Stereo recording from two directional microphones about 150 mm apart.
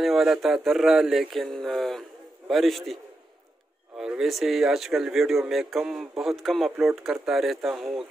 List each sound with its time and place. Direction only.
0.0 s speech: centre (ahead or behind)